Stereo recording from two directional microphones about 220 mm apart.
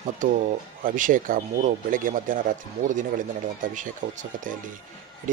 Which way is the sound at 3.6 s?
35° right (ahead or behind).